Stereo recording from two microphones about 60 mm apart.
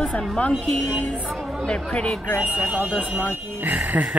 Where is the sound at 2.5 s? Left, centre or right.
Right.